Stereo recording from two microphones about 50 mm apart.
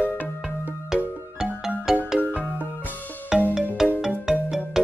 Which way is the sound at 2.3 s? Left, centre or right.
Right.